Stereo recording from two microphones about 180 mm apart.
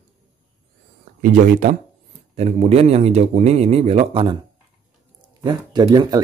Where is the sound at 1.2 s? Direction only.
45° right (ahead or behind).